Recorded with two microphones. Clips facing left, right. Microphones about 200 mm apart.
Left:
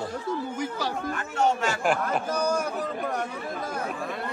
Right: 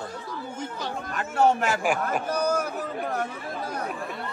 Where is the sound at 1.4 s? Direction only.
60° right (ahead or behind).